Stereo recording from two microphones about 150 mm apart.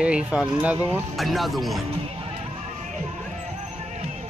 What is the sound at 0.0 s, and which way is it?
Speech, 10° right (ahead or behind).